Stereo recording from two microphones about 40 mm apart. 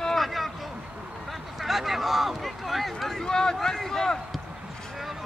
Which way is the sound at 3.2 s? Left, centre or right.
Centre.